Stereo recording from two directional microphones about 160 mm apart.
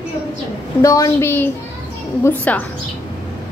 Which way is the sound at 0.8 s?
20° left (ahead or behind).